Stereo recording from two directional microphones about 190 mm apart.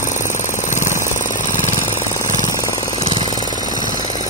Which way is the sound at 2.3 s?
20° left (ahead or behind).